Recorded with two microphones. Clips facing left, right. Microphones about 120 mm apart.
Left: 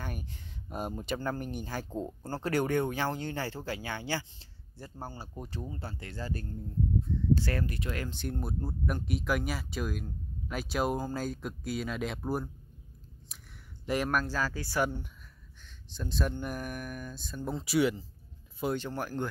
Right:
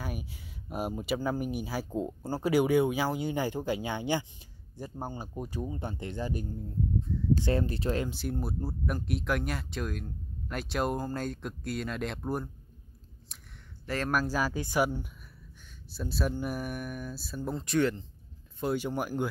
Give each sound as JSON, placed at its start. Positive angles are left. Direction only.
{"t": 0.0, "sound": "speech", "side_deg": -10}
{"t": 7.4, "sound": "speech", "side_deg": -25}
{"t": 8.1, "sound": "speech", "side_deg": -5}
{"t": 13.8, "sound": "speech", "side_deg": 15}
{"t": 14.1, "sound": "speech", "side_deg": -10}
{"t": 15.9, "sound": "speech", "side_deg": -5}
{"t": 18.8, "sound": "speech", "side_deg": -15}